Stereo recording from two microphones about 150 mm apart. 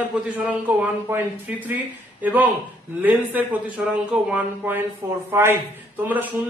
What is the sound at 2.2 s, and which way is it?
A man's voice, 10° right (ahead or behind).